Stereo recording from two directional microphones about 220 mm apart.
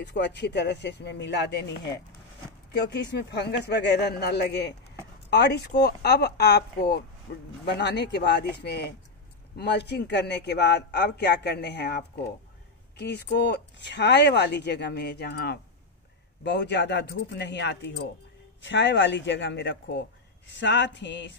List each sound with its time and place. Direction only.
0.0 s speech: 50° left (ahead or behind)